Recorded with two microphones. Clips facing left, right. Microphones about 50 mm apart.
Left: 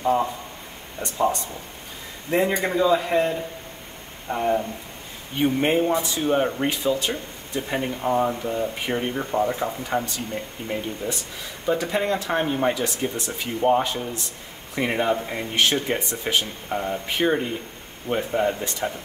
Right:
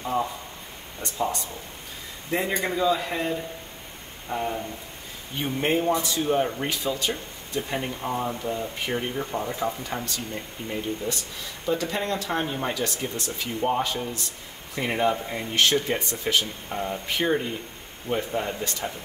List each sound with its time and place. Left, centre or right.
2.5 s speech: centre
4.3 s speech: left